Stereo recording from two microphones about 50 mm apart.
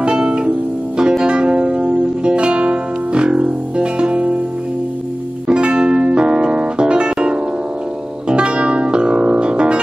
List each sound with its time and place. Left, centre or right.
0.0 s music: centre
5.5 s music: centre